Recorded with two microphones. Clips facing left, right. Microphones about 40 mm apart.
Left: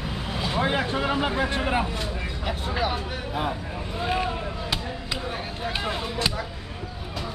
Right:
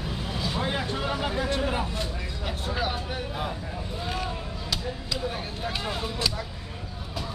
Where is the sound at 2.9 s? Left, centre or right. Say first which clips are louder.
Left 3 dB; left.